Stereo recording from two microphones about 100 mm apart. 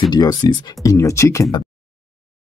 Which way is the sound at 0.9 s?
30° left (ahead or behind).